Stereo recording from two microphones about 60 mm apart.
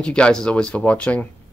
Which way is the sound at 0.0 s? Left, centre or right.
Centre.